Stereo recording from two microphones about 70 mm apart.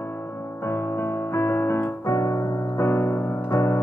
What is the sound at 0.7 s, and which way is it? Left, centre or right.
Music, left.